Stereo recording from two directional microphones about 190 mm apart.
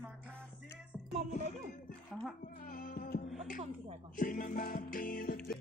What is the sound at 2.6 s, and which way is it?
Music, 50° left (ahead or behind).